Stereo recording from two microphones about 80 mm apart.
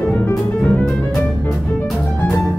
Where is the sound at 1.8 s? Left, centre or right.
Centre.